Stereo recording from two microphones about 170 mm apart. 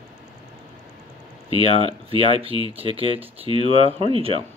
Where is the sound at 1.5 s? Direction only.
30° right (ahead or behind).